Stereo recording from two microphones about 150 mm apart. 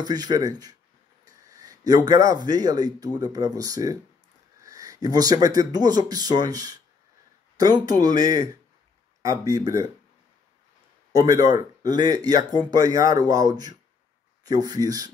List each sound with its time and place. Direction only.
0.0 s speech: 25° right (ahead or behind)
11.1 s speech: 25° right (ahead or behind)